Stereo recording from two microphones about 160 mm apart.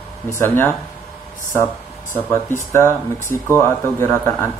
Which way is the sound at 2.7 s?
15° left (ahead or behind).